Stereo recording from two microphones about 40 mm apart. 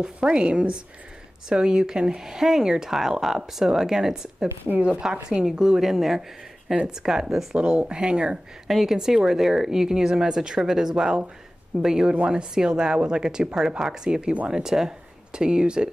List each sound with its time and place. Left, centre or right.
0.0 s speech: right
7.5 s speech: right
8.6 s a woman's voice: centre; by 12.4 s right
12.5 s speech: centre